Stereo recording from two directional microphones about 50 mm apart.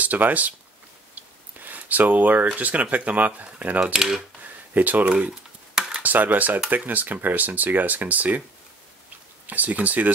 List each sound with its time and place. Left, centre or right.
0.0 s speech: right
1.1 s a sound: right
2.5 s speech: right
3.9 s speech: centre
4.4 s a sound: right
5.8 s computer keyboard: centre
6.0 s speech: right
9.5 s speech: right